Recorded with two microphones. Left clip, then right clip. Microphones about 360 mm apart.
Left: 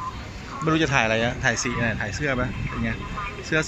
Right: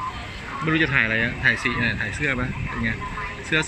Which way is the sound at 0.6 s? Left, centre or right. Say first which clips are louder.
Right 1 dB; centre.